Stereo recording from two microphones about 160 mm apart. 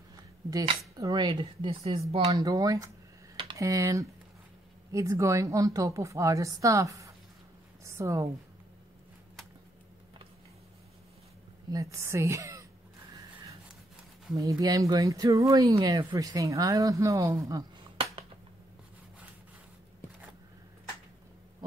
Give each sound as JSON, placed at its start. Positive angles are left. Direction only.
{"t": 0.1, "sound": "a sound", "side_deg": -20}
{"t": 0.9, "sound": "speech", "side_deg": -25}
{"t": 2.3, "sound": "a woman's voice", "side_deg": -20}
{"t": 3.3, "sound": "typing", "side_deg": -30}
{"t": 3.6, "sound": "a woman's voice", "side_deg": -20}
{"t": 11.7, "sound": "a woman's voice", "side_deg": -20}
{"t": 14.3, "sound": "a woman's voice", "side_deg": -20}